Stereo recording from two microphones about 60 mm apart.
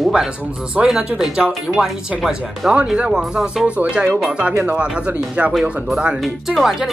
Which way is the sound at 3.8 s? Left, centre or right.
Right.